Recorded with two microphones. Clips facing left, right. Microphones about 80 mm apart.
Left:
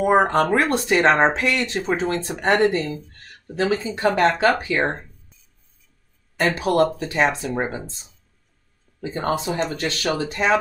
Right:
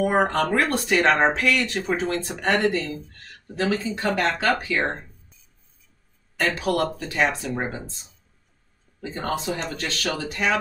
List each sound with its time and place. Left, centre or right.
0.0 s speech: left
4.7 s speech: centre
6.3 s speech: left
9.2 s speech: left